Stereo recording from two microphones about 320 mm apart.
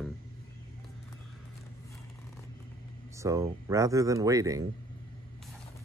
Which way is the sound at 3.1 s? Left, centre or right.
Centre.